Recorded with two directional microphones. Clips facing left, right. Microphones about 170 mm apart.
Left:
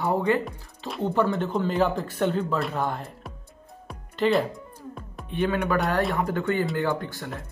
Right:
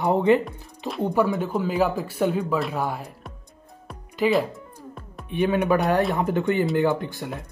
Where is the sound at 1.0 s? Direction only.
10° right (ahead or behind).